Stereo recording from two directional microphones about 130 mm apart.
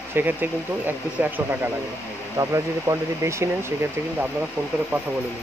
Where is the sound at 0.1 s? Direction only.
15° right (ahead or behind).